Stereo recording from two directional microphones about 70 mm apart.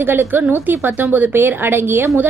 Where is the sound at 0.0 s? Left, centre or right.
Right.